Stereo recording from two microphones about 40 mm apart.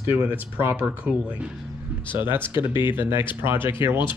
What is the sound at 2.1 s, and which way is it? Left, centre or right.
Speech, right.